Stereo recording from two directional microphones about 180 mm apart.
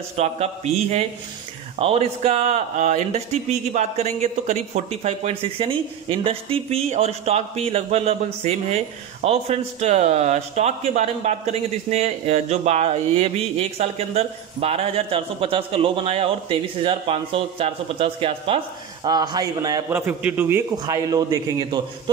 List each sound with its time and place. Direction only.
0.2 s a man's voice: 35° right (ahead or behind)